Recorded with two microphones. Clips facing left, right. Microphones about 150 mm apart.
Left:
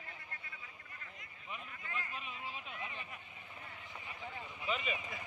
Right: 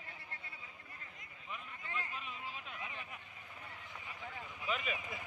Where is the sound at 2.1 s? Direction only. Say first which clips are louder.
Left 1 dB; centre (ahead or behind).